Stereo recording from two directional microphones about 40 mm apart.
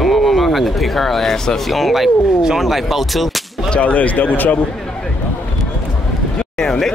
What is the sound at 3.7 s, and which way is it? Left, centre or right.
Speech, left.